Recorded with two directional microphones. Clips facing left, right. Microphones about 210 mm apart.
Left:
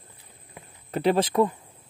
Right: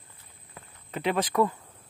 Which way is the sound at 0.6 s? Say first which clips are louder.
Left 2 dB; 15° left (ahead or behind).